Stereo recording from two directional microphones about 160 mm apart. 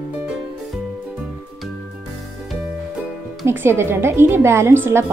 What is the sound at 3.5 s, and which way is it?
Speech, 15° right (ahead or behind).